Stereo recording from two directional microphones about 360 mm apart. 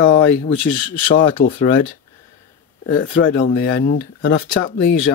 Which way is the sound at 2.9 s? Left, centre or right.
Left.